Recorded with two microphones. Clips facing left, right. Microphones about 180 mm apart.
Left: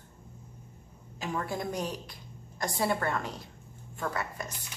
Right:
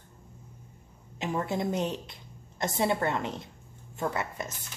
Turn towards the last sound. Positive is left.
turn(degrees=-20)  # may be behind; listen again after turning